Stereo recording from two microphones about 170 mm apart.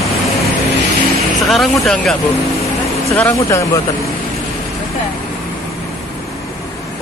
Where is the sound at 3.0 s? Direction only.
15° left (ahead or behind).